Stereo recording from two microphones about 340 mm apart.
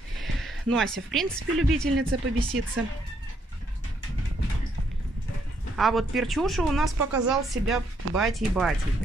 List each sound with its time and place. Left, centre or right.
0.2 s speech: centre
2.0 s speech: right
5.8 s a woman's voice: centre